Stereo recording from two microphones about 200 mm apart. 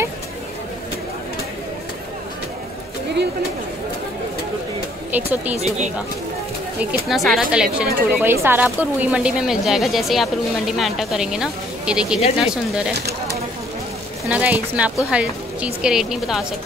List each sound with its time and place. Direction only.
5.1 s speech: 10° right (ahead or behind)
6.8 s a woman's voice: 5° right (ahead or behind)
12.9 s bird: 55° right (ahead or behind)
14.3 s a woman's voice: 5° right (ahead or behind)